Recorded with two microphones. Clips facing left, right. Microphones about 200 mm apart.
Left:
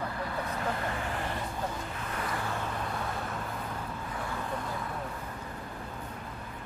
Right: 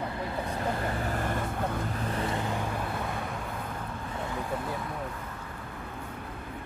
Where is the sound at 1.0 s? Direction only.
45° right (ahead or behind).